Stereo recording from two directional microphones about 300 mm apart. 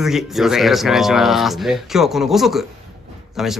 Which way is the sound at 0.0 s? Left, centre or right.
Centre.